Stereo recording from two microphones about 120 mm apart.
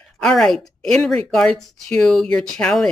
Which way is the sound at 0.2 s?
5° left (ahead or behind).